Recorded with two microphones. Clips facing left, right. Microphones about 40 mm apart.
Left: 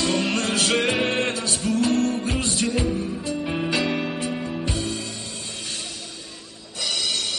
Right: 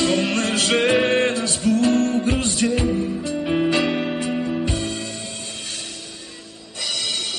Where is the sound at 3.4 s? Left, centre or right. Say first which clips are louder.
Right 6 dB; centre.